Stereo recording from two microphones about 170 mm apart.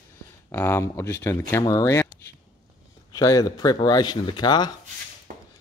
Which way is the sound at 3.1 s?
20° left (ahead or behind).